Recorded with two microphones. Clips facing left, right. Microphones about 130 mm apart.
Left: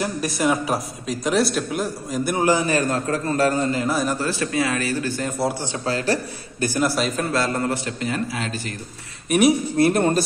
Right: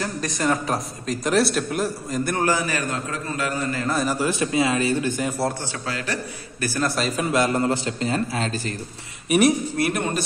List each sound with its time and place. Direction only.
0.0 s a man's voice: 10° left (ahead or behind)
2.4 s a man's voice: 25° left (ahead or behind)
3.8 s a man's voice: centre (ahead or behind)
4.2 s a man's voice: 20° right (ahead or behind)
5.5 s a man's voice: 15° left (ahead or behind)
5.9 s a man's voice: 30° left (ahead or behind)
6.6 s a man's voice: 15° left (ahead or behind)
6.9 s a man's voice: centre (ahead or behind)
7.2 s a man's voice: 15° right (ahead or behind); by 8.7 s 35° right (ahead or behind)
9.8 s a man's voice: 30° left (ahead or behind)